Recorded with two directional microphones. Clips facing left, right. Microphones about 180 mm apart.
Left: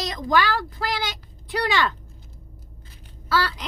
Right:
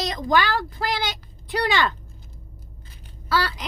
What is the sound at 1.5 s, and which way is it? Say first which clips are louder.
Speech: right 1 dB; 25° right (ahead or behind).